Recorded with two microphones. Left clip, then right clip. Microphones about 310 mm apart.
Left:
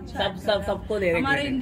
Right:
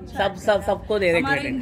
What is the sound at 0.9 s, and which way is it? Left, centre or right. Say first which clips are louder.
Speech: right 4 dB; right.